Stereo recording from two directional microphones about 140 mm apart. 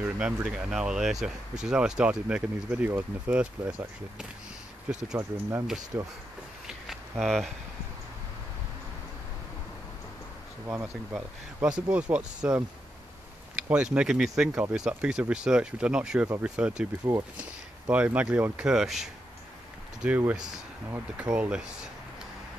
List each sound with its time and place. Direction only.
0.0 s speech: 10° right (ahead or behind)
4.9 s speech: 10° right (ahead or behind)
6.9 s a sound: centre (ahead or behind)
10.7 s speech: 15° right (ahead or behind)
11.6 s speech: 5° right (ahead or behind)
13.6 s a sound: 10° right (ahead or behind)
13.9 s speech: 5° right (ahead or behind)